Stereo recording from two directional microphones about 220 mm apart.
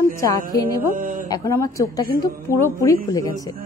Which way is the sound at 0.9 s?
35° right (ahead or behind).